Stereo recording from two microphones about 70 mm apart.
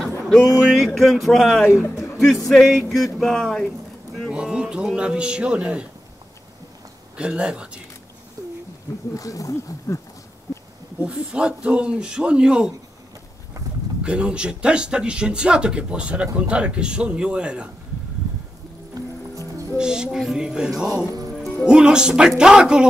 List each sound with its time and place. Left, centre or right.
0.6 s a sound: centre
1.7 s speech: left
2.4 s a sound: centre
4.3 s speech: centre
7.2 s speech: centre
8.4 s a sound: right
9.1 s speech: left
11.0 s speech: centre
14.0 s speech: centre
18.9 s music: right
19.8 s speech: centre